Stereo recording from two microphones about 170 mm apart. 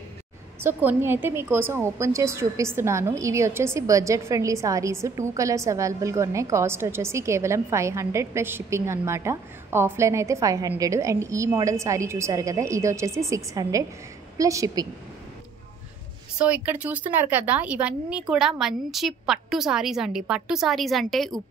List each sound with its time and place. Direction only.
0.6 s a woman's voice: 15° right (ahead or behind)
16.3 s a woman's voice: 5° right (ahead or behind)